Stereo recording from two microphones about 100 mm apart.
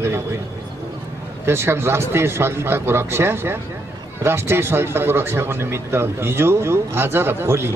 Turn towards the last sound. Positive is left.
turn(degrees=-25)  # may be behind; listen again after turning